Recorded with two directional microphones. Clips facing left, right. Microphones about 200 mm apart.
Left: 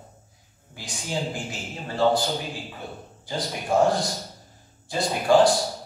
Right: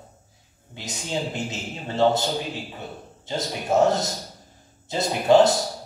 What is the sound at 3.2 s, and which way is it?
A man's voice, 20° right (ahead or behind).